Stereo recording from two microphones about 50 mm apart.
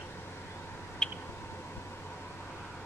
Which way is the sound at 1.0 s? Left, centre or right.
Centre.